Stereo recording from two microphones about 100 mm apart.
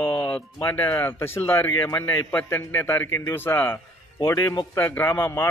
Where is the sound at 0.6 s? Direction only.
20° left (ahead or behind).